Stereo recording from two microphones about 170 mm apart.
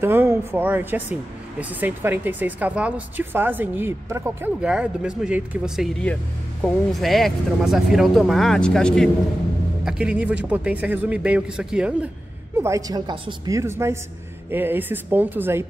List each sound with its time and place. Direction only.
0.0 s speech: 15° right (ahead or behind)
12.5 s a woman's voice: 15° right (ahead or behind)